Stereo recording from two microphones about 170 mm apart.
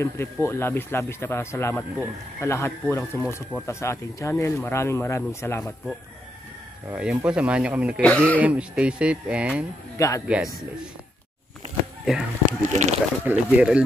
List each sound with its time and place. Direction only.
0.0 s speech: 15° left (ahead or behind)
6.9 s speech: 5° right (ahead or behind)
8.0 s speech: 10° left (ahead or behind)
8.4 s speech: 5° right (ahead or behind)
9.9 s speech: 20° left (ahead or behind)
10.2 s speech: 5° right (ahead or behind)
12.0 s speech: 5° right (ahead or behind)
12.4 s speech: 45° right (ahead or behind)
13.2 s speech: 10° right (ahead or behind)